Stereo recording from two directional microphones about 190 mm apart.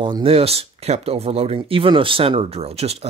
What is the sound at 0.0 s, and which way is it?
Speech, 30° right (ahead or behind).